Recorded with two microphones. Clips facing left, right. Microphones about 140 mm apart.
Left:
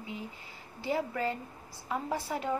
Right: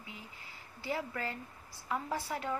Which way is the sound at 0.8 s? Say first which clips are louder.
Left 6 dB; 25° left (ahead or behind).